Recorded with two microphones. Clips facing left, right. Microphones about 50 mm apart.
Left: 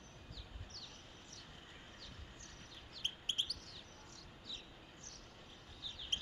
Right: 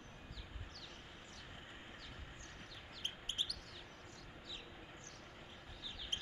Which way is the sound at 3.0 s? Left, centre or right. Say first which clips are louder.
Left 2 dB; left.